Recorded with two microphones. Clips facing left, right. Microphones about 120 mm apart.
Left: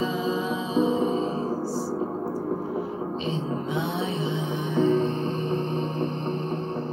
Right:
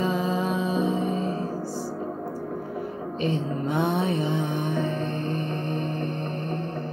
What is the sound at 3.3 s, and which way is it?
Music, 55° right (ahead or behind).